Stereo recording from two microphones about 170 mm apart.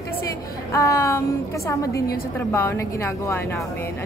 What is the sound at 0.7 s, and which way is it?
Speech, 15° left (ahead or behind).